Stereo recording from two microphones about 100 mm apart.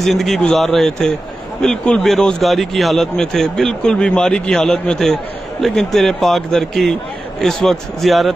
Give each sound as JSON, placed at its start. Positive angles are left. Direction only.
{"t": 0.0, "sound": "speech", "side_deg": 0}